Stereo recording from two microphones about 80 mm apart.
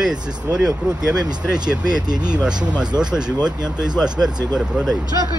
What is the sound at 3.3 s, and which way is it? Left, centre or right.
Speech, right.